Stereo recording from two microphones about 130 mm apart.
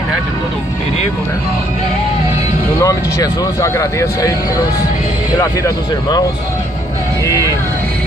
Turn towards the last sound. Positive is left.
turn(degrees=25)  # may be behind; listen again after turning